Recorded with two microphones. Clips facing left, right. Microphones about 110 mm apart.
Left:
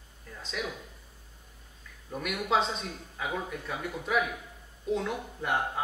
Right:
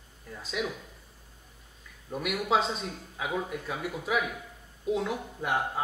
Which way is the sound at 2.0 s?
5° right (ahead or behind).